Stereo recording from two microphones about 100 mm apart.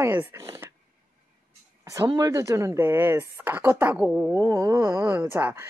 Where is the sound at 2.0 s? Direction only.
40° right (ahead or behind); by 4.0 s 20° right (ahead or behind).